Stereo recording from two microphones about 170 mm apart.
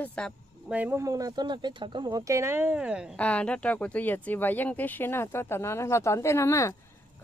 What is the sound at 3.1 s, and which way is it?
Speech, 5° left (ahead or behind).